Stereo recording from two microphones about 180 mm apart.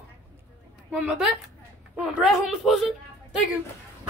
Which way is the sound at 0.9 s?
5° right (ahead or behind).